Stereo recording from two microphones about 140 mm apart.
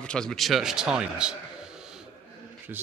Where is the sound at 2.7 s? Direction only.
15° right (ahead or behind).